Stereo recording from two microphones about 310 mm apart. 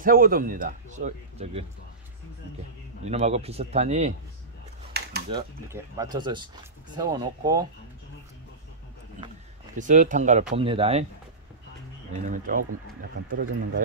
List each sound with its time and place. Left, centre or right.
0.0 s a man's voice: right
3.1 s a man's voice: right
4.9 s a sound: right
5.3 s speech: centre
9.8 s a man's voice: right
12.1 s a man's voice: right